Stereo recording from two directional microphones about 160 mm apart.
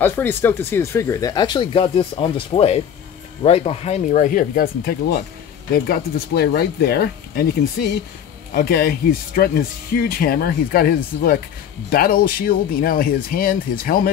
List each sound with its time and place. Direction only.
0.0 s speech: 15° left (ahead or behind); by 7.4 s 80° left
8.5 s speech: 70° left (ahead or behind)